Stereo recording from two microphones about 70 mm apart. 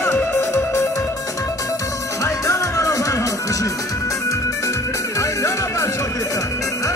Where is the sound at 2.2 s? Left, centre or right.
Left.